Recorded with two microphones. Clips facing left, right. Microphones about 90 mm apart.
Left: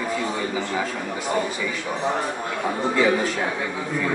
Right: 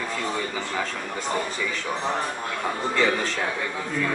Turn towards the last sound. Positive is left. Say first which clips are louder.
# left 3 dB
turn(degrees=10)  # may be behind; listen again after turning